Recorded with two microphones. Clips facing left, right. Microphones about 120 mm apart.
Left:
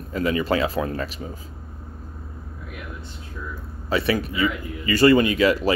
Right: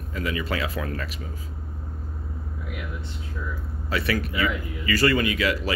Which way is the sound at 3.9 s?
25° left (ahead or behind).